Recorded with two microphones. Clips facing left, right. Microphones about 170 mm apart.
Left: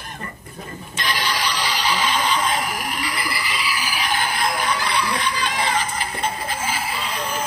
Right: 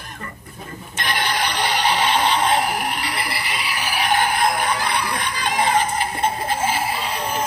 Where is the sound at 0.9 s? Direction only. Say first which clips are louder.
Right 2 dB; 55° right (ahead or behind).